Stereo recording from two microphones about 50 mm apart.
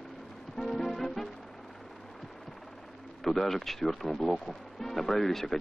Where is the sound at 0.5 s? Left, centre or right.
Centre.